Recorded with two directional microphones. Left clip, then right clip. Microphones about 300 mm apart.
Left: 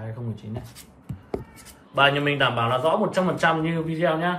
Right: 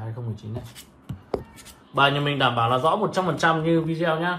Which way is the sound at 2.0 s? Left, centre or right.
Centre.